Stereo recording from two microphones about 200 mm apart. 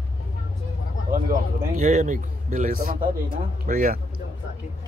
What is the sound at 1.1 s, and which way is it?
A man's voice, 40° right (ahead or behind).